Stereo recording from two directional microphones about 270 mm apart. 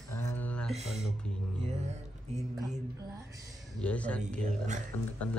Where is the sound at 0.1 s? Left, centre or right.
Centre.